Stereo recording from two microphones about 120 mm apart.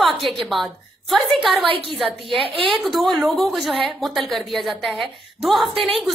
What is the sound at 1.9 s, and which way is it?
A woman's voice, centre (ahead or behind).